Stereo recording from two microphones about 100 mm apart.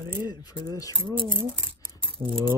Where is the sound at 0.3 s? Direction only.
45° left (ahead or behind).